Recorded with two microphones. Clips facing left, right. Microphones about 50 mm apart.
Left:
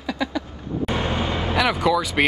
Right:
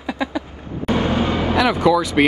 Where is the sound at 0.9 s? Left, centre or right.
Centre.